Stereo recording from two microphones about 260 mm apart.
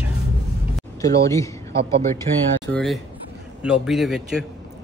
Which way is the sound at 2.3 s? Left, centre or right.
Right.